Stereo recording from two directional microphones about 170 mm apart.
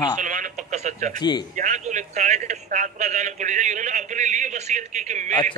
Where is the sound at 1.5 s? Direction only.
45° right (ahead or behind).